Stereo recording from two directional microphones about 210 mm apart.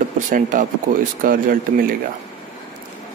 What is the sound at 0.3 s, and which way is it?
Speech, 40° right (ahead or behind).